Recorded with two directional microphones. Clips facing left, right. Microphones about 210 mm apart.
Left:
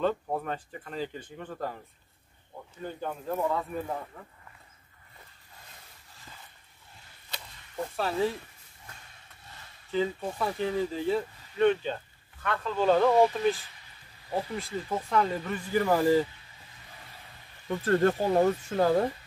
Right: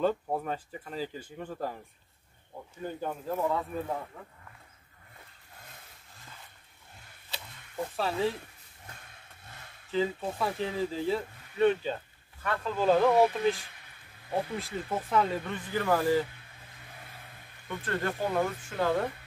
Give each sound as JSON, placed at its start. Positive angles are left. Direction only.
{"t": 0.0, "sound": "speech", "side_deg": -5}
{"t": 2.8, "sound": "speech", "side_deg": -5}
{"t": 7.9, "sound": "speech", "side_deg": 0}
{"t": 9.8, "sound": "speech", "side_deg": 0}
{"t": 13.7, "sound": "a sound", "side_deg": -55}
{"t": 14.3, "sound": "speech", "side_deg": 0}
{"t": 17.6, "sound": "speech", "side_deg": 40}